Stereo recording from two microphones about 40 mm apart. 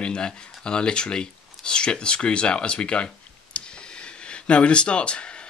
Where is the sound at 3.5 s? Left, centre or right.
Left.